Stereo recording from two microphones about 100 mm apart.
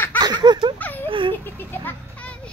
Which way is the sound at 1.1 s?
55° right (ahead or behind).